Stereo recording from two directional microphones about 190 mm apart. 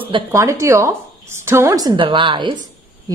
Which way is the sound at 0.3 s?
15° right (ahead or behind).